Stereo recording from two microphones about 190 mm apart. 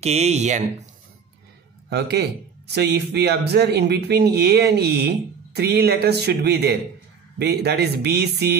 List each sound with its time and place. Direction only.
0.0 s speech: 35° right (ahead or behind)
1.9 s speech: 60° right (ahead or behind)